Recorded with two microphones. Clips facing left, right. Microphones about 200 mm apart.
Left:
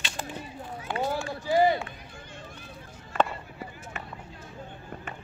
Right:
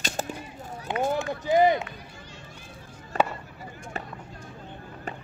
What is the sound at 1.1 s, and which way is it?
Run, 20° right (ahead or behind).